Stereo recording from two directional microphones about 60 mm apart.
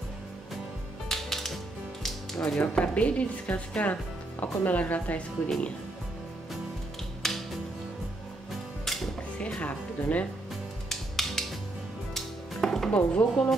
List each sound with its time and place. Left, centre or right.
1.0 s music: centre
2.6 s speech: left
7.2 s music: centre
8.8 s music: centre
9.6 s music: left
10.9 s music: centre
12.9 s speech: left